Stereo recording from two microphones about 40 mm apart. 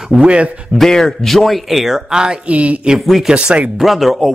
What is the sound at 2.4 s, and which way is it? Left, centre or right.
Speech, right.